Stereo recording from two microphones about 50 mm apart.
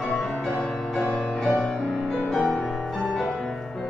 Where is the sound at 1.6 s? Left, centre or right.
Centre.